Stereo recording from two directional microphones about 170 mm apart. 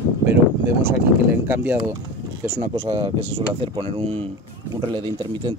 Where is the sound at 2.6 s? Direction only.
35° right (ahead or behind).